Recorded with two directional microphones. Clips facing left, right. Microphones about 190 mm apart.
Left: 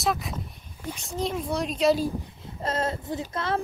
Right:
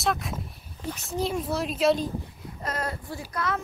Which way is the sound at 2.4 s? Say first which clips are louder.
Left 5 dB; 25° left (ahead or behind).